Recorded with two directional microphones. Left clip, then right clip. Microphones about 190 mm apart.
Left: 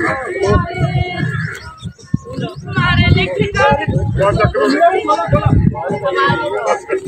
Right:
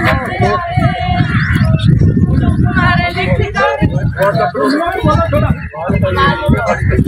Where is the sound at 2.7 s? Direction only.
50° left (ahead or behind).